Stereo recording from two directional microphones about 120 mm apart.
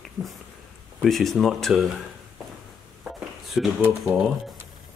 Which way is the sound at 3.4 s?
Centre (ahead or behind).